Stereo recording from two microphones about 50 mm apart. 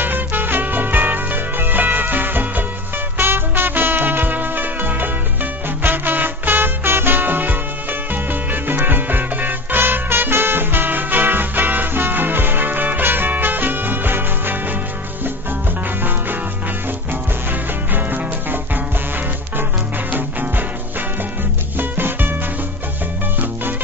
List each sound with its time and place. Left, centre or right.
0.0 s music: right
17.1 s music: right
20.1 s music: right
21.7 s music: right